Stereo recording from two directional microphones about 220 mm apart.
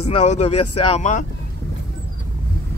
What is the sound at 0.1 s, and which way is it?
Speech, 30° left (ahead or behind).